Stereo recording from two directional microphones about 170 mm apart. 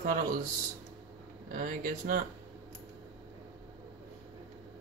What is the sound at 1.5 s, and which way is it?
Speech, 55° right (ahead or behind).